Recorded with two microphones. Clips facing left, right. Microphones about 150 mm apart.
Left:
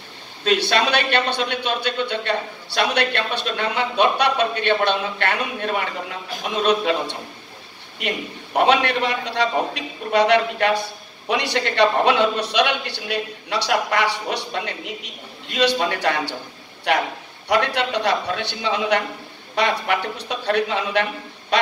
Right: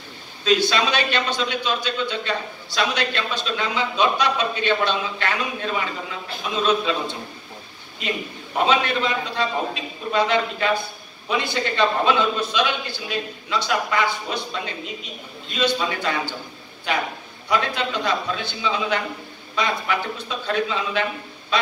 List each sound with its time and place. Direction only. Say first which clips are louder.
0.4 s a man's voice: even; 60° left (ahead or behind)
6.4 s a man's voice: left 2 dB; 70° left (ahead or behind)
8.5 s a man's voice: left 3 dB; 70° left (ahead or behind)